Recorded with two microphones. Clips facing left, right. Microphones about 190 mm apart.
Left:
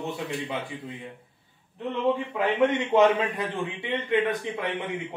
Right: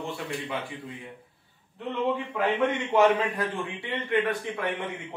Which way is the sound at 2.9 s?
25° left (ahead or behind).